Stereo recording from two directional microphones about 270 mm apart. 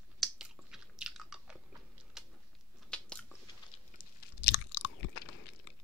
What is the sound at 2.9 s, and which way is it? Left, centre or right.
Biting, centre.